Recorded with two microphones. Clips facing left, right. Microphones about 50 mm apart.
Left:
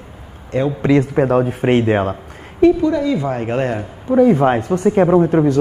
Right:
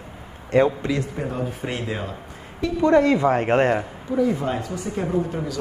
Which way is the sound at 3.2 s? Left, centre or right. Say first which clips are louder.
Right 1 dB; right.